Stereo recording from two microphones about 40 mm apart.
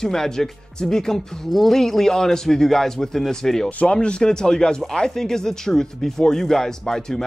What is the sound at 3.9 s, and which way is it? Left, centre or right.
Speech, left.